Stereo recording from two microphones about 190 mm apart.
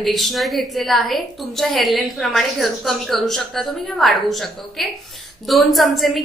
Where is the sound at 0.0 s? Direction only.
Centre (ahead or behind).